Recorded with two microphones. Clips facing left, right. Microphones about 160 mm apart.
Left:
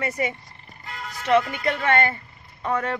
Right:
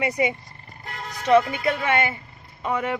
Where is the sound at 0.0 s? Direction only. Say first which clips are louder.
Right 3 dB; 15° right (ahead or behind).